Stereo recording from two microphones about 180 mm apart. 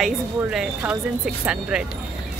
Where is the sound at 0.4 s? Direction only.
5° right (ahead or behind).